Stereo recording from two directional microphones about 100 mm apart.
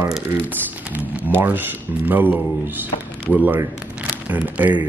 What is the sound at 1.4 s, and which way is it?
Speech, 20° right (ahead or behind).